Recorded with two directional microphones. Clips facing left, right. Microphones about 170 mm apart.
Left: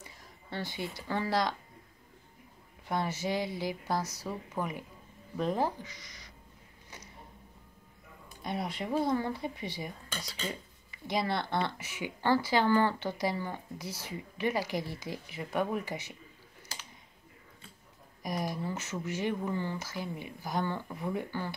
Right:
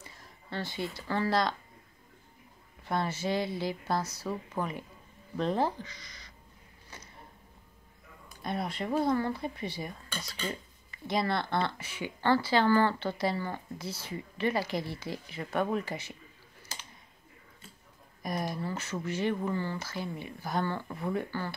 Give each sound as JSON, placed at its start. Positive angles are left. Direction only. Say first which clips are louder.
{"t": 0.0, "sound": "speech", "louder": "even", "side_deg": 15}
{"t": 2.9, "sound": "speech", "louder": "right 1 dB", "side_deg": 15}
{"t": 8.5, "sound": "speech", "louder": "right 1 dB", "side_deg": 15}
{"t": 18.2, "sound": "speech", "louder": "right 1 dB", "side_deg": 15}